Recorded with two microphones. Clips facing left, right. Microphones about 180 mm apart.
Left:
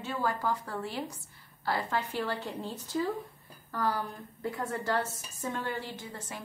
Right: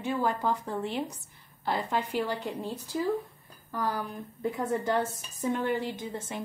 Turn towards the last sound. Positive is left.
turn(degrees=-20)  # may be behind; listen again after turning